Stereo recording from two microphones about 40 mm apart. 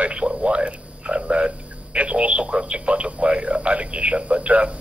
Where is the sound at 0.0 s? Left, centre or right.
Right.